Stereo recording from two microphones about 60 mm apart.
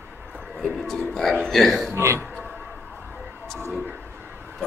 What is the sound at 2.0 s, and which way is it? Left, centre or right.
Speech, right.